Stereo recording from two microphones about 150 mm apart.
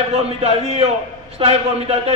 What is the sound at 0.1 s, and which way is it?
A man's voice, 40° right (ahead or behind).